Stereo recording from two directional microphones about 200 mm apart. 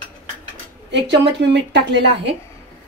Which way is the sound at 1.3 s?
60° right (ahead or behind).